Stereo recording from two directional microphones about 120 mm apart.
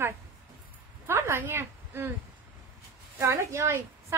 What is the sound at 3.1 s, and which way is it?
A woman's voice, 20° right (ahead or behind).